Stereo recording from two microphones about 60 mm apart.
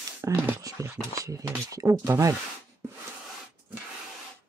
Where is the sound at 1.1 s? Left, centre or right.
Right.